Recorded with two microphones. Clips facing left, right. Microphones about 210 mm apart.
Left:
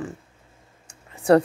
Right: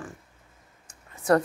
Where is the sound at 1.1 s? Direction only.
30° left (ahead or behind).